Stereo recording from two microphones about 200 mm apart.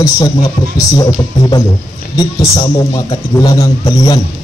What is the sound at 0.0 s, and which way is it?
A man's voice, 15° left (ahead or behind).